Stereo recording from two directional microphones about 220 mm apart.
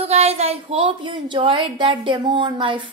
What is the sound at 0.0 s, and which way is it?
A woman's voice, 30° right (ahead or behind).